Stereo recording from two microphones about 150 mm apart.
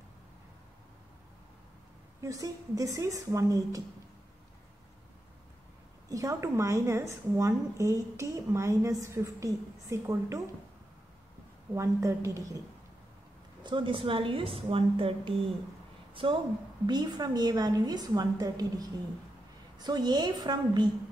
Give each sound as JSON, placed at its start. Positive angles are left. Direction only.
{"t": 2.2, "sound": "a woman's voice", "side_deg": -20}
{"t": 6.0, "sound": "a woman's voice", "side_deg": -20}
{"t": 11.7, "sound": "a woman's voice", "side_deg": -20}
{"t": 13.6, "sound": "a woman's voice", "side_deg": -30}